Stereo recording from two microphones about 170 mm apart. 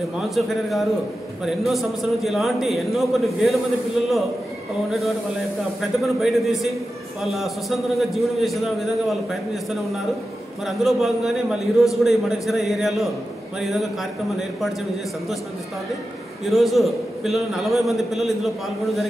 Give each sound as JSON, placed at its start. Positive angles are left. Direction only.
{"t": 0.3, "sound": "a man's voice", "side_deg": 0}
{"t": 5.8, "sound": "a man's voice", "side_deg": 0}
{"t": 10.8, "sound": "a man's voice", "side_deg": 0}
{"t": 16.4, "sound": "a man's voice", "side_deg": 0}